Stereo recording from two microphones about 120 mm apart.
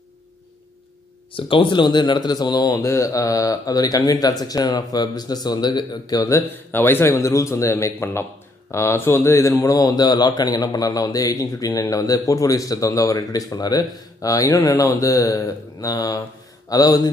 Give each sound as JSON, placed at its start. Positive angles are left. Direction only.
{"t": 1.3, "sound": "speech", "side_deg": 45}
{"t": 6.7, "sound": "a man's voice", "side_deg": 20}